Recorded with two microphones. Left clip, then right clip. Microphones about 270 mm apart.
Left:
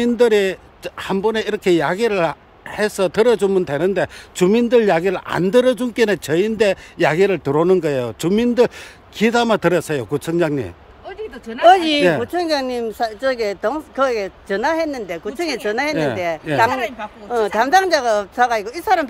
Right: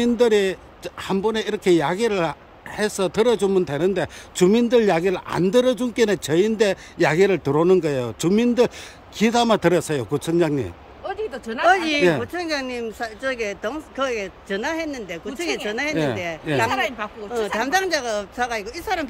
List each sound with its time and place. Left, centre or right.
0.0 s speech: centre
11.1 s a sound: right
11.6 s a woman's voice: left
16.7 s speech: centre
17.6 s speech: centre